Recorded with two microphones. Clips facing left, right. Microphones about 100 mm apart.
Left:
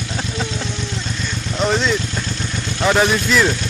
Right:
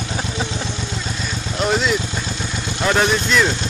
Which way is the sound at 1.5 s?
5° right (ahead or behind).